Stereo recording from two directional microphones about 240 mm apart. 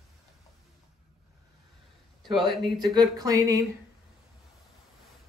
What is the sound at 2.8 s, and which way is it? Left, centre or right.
Speech, centre.